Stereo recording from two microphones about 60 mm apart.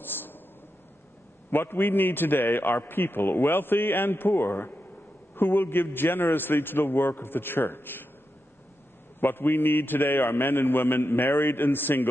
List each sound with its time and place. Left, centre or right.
0.0 s a sound: left
1.5 s a man's voice: left
9.2 s a man's voice: left